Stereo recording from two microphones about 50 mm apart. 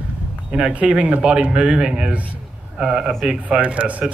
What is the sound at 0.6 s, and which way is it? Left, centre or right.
A man's voice, right.